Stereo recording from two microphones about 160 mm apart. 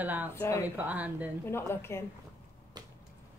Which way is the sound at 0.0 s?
10° right (ahead or behind).